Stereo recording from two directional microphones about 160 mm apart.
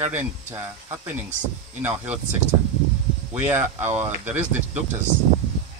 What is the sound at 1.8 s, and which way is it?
Speech, 10° right (ahead or behind).